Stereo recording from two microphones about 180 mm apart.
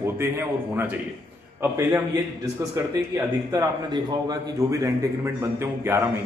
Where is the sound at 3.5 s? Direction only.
20° right (ahead or behind).